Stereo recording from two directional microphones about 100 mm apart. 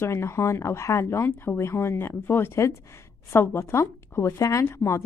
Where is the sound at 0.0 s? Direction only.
25° left (ahead or behind).